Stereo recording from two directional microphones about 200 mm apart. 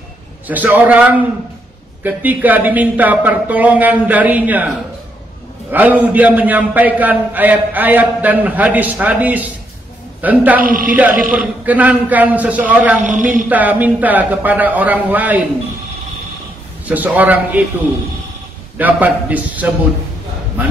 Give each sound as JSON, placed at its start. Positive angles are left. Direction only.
{"t": 0.5, "sound": "a man's voice", "side_deg": -10}
{"t": 10.6, "sound": "a man's voice", "side_deg": -45}
{"t": 11.2, "sound": "a man's voice", "side_deg": -5}
{"t": 16.8, "sound": "a man's voice", "side_deg": -10}
{"t": 18.8, "sound": "a man's voice", "side_deg": -10}